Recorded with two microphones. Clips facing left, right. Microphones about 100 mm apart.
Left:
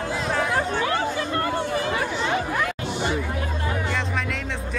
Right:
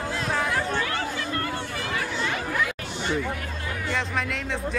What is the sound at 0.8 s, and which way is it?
Chatter, 25° left (ahead or behind).